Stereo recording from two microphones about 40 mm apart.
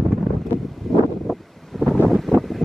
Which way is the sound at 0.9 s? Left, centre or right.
Centre.